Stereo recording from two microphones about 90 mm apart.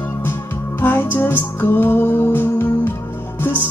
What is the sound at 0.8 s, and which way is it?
Music, 25° left (ahead or behind).